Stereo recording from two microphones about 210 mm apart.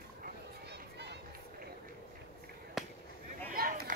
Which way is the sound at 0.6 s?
55° right (ahead or behind).